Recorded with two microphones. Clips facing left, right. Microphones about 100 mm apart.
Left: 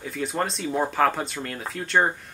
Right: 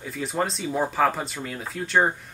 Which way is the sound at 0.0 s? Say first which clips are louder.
Even; centre (ahead or behind).